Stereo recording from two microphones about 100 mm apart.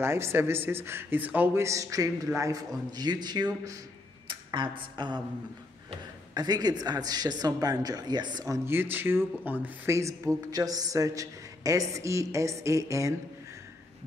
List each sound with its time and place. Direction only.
0.0 s a man's voice: 25° right (ahead or behind); by 5.2 s 50° right (ahead or behind)
6.3 s speech: 40° right (ahead or behind)
8.5 s speech: 25° right (ahead or behind)
9.9 s speech: 30° right (ahead or behind)